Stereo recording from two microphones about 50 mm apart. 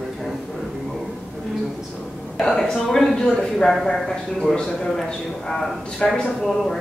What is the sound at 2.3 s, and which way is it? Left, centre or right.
A man's voice, centre.